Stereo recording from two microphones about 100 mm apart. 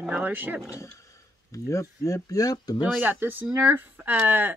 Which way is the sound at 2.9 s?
20° right (ahead or behind).